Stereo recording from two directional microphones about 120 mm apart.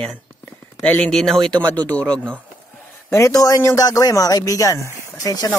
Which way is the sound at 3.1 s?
25° left (ahead or behind).